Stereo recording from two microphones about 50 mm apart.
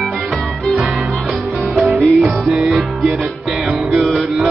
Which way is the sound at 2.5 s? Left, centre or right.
Centre.